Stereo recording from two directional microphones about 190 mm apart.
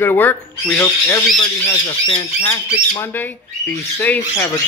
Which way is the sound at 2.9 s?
10° left (ahead or behind).